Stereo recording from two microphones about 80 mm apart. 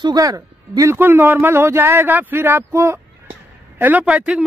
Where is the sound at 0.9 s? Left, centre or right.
Right.